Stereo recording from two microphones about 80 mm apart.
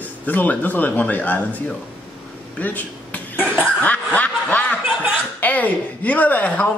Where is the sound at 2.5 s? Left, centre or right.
Left.